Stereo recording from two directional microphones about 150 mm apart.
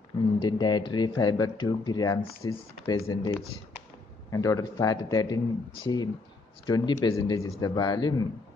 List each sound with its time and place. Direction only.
0.4 s speech: 30° left (ahead or behind)